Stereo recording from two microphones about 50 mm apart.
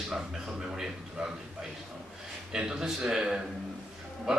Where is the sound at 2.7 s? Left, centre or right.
Centre.